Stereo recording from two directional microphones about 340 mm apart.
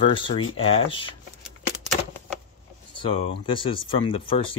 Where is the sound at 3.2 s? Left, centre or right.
Centre.